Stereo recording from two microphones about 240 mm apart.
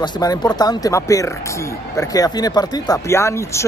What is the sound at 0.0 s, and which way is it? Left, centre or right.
Speech, centre.